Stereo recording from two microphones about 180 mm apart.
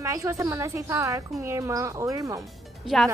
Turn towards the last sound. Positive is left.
turn(degrees=0)  # may be behind; listen again after turning